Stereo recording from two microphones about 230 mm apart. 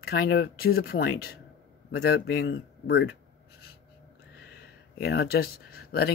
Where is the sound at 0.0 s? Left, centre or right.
Left.